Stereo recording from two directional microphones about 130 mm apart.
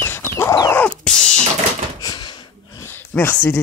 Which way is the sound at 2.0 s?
30° left (ahead or behind).